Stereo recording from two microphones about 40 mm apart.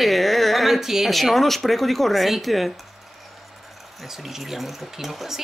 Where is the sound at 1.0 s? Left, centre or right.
Centre.